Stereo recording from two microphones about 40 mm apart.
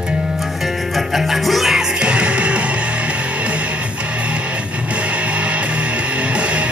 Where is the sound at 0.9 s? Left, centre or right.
Centre.